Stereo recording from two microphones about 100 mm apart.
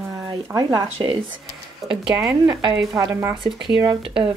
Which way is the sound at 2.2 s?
35° right (ahead or behind).